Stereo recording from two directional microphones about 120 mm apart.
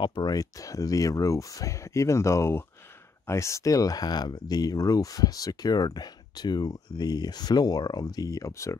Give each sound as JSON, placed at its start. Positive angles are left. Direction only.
{"t": 0.0, "sound": "speech", "side_deg": 40}